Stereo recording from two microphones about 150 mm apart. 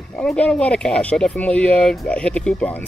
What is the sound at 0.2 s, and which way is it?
Speech, 10° left (ahead or behind).